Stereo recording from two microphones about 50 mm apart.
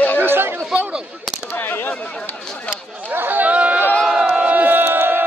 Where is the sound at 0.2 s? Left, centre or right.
Right.